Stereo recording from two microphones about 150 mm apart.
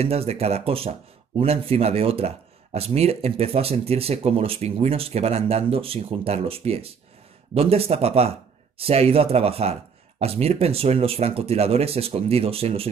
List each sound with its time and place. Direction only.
0.0 s speech: 45° right (ahead or behind)